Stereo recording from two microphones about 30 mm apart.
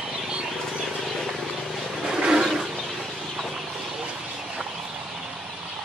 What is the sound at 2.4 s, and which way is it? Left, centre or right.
Wild animals, centre.